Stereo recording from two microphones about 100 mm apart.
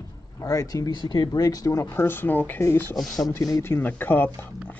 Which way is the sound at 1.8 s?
20° left (ahead or behind).